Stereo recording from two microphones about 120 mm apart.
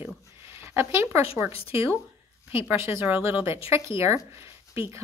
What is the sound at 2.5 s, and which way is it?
A woman's voice, 20° right (ahead or behind).